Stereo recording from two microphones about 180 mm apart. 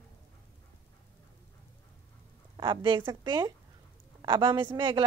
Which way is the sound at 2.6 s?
25° right (ahead or behind).